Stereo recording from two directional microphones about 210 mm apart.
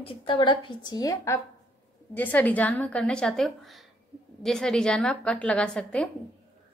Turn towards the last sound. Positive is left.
turn(degrees=5)  # may be behind; listen again after turning